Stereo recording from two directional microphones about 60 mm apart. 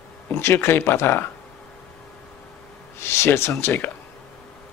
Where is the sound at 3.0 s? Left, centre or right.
Left.